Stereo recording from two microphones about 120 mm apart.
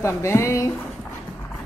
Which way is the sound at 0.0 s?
25° left (ahead or behind).